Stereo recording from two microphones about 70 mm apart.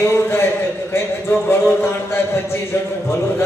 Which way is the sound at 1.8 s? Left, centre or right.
Left.